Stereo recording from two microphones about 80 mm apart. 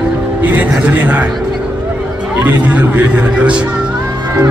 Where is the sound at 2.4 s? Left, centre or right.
Right.